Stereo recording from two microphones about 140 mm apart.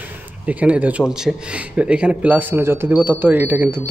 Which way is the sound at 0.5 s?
10° right (ahead or behind).